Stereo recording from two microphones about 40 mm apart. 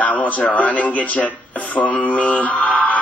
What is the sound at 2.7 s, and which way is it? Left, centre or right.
Music, left.